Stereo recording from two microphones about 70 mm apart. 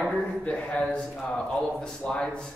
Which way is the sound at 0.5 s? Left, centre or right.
Centre.